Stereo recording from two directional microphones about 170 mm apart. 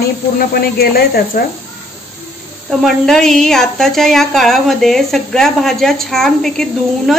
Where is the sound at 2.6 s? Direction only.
Centre (ahead or behind).